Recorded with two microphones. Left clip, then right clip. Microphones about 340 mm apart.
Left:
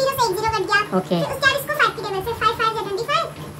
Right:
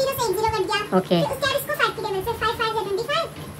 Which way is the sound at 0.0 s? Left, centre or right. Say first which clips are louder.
Left 2 dB; centre.